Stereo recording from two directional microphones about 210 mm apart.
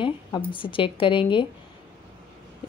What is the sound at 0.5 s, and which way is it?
A woman's voice, 25° left (ahead or behind).